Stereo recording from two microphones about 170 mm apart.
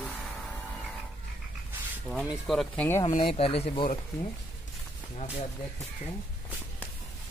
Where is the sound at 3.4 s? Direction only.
35° left (ahead or behind).